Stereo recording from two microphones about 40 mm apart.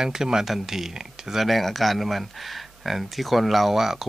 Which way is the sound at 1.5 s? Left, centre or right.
Centre.